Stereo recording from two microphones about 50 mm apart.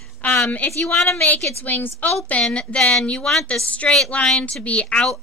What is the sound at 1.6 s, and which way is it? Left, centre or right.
Speech, left.